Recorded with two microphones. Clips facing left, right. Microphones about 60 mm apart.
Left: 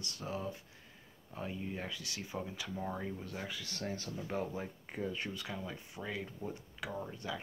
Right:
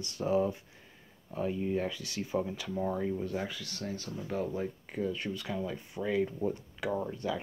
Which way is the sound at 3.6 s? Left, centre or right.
Left.